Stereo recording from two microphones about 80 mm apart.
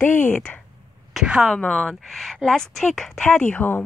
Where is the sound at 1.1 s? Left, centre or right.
Centre.